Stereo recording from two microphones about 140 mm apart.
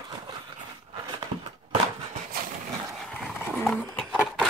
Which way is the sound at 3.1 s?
5° left (ahead or behind).